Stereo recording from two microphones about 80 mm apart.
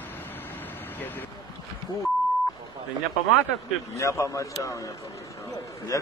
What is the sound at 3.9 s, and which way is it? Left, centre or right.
A man's voice, left.